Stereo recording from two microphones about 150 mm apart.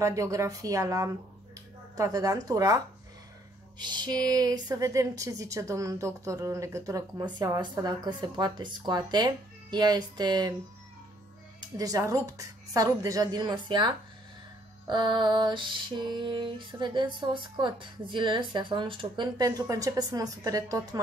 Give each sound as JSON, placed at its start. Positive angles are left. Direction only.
{"t": 0.0, "sound": "speech", "side_deg": -20}
{"t": 11.7, "sound": "speech", "side_deg": -25}
{"t": 14.9, "sound": "lullaby", "side_deg": -30}